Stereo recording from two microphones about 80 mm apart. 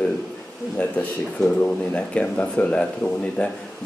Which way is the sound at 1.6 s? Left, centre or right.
Centre.